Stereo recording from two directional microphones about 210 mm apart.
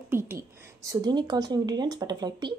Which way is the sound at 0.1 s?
10° right (ahead or behind).